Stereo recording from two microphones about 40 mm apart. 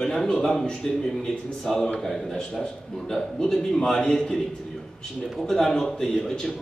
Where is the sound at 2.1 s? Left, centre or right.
Centre.